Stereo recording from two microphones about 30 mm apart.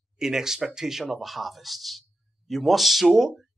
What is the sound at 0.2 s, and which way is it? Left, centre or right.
Speech, centre.